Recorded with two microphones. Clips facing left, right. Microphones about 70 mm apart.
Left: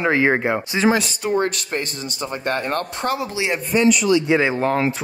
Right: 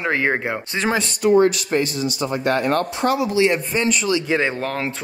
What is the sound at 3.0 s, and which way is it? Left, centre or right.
Speech, right.